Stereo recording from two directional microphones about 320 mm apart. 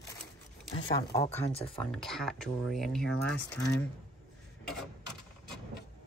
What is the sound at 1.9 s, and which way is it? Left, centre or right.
Speech, centre.